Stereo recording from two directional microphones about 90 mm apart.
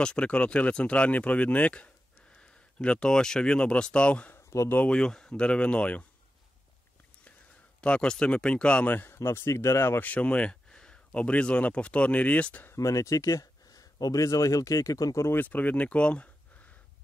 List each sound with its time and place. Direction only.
0.0 s speech: 10° left (ahead or behind)
4.5 s speech: 35° left (ahead or behind)
4.7 s speech: 10° left (ahead or behind)
7.8 s speech: 10° left (ahead or behind)
12.7 s speech: 35° left (ahead or behind)
15.2 s speech: 20° left (ahead or behind)